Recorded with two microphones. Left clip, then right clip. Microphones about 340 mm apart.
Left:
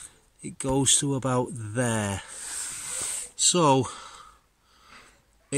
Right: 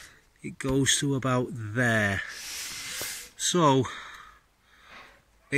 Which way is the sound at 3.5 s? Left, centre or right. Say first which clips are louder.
Left 1 dB; centre.